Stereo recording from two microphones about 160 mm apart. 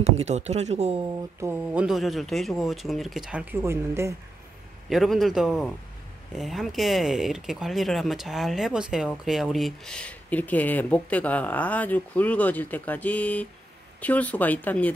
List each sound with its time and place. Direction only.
0.0 s speech: 45° right (ahead or behind)
1.4 s speech: 10° right (ahead or behind)
4.8 s speech: centre (ahead or behind)